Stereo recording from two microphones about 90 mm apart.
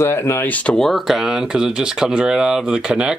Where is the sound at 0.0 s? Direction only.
30° left (ahead or behind).